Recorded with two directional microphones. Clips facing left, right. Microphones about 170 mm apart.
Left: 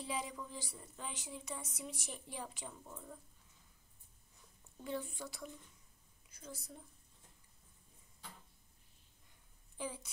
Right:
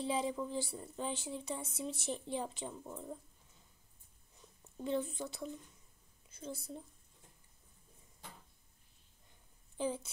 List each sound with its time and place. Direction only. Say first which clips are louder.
0.0 s speech: right 7 dB; 30° right (ahead or behind)
4.4 s speech: right 9 dB; 25° right (ahead or behind)
9.8 s a woman's voice: right 8 dB; 25° right (ahead or behind)